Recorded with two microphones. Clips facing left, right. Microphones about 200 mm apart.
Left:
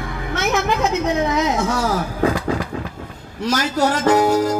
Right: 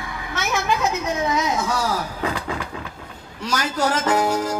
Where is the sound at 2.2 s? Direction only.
45° left (ahead or behind).